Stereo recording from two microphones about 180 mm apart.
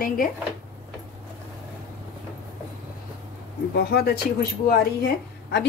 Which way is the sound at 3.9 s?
60° left (ahead or behind).